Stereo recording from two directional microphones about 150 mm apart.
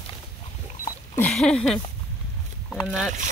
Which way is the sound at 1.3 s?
5° left (ahead or behind).